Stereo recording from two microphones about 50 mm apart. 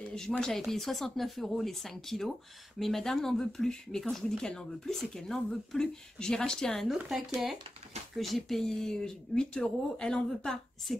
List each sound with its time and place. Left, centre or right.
0.4 s speech: centre
8.2 s speech: centre
10.9 s speech: centre